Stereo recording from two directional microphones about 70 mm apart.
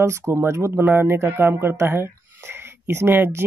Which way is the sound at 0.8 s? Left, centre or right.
Right.